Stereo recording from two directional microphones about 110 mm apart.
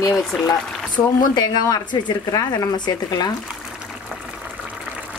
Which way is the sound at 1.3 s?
35° left (ahead or behind).